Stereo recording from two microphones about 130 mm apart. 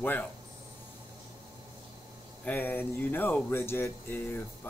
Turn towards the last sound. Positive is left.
turn(degrees=15)  # may be behind; listen again after turning